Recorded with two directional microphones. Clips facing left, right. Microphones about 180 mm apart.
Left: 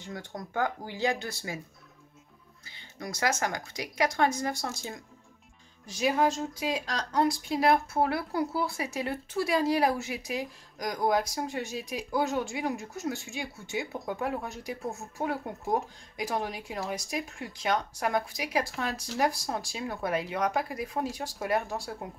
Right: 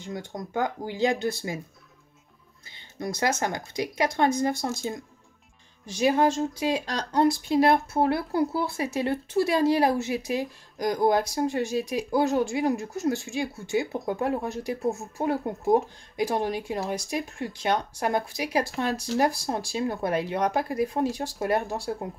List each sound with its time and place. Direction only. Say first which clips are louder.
0.3 s speech: right 2 dB; 20° right (ahead or behind)
3.0 s speech: right 3 dB; 25° right (ahead or behind)
6.0 s speech: right 4 dB; 35° right (ahead or behind)